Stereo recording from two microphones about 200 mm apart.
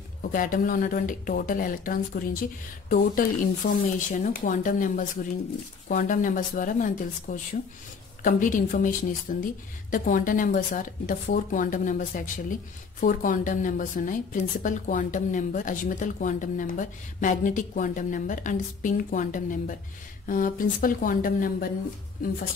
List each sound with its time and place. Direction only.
0.2 s a woman's voice: 45° left (ahead or behind)